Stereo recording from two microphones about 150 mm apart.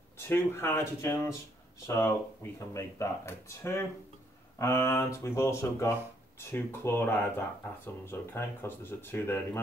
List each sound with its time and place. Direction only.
0.2 s speech: 15° left (ahead or behind)